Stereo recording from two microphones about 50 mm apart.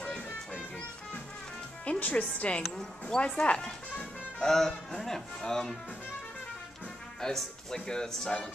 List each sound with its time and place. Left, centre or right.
0.0 s music: left
1.9 s speech: left; by 5.8 s centre
7.2 s speech: centre